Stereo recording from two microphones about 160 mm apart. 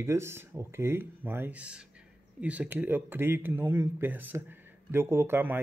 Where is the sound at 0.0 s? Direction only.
15° right (ahead or behind).